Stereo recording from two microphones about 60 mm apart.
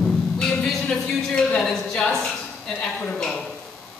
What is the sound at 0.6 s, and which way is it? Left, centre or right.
Speech, centre.